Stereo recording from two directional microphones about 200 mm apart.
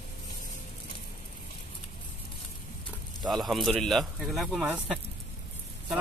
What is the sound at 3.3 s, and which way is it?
Speech, centre (ahead or behind).